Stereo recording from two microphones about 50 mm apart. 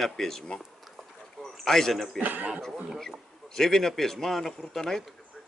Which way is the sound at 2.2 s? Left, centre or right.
Right.